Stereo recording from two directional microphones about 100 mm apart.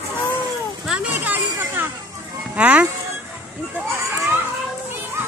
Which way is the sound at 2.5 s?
15° right (ahead or behind).